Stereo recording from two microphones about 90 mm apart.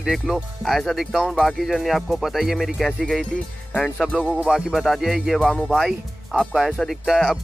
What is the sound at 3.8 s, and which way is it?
Speech, 5° left (ahead or behind).